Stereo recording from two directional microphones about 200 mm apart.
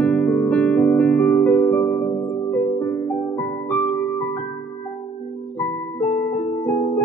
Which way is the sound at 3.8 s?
5° left (ahead or behind).